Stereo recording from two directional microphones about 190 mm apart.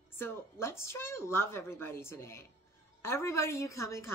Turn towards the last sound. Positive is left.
turn(degrees=15)  # may be behind; listen again after turning